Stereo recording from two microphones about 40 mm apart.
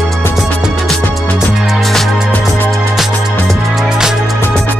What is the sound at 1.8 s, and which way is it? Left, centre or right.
Music, centre.